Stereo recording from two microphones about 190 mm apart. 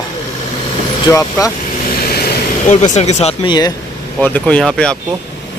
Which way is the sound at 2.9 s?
35° left (ahead or behind).